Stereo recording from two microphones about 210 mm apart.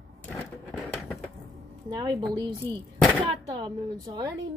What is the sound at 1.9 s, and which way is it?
Speech, 20° right (ahead or behind).